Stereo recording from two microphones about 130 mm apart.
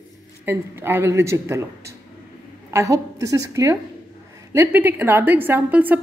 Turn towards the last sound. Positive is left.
turn(degrees=-15)  # may be behind; listen again after turning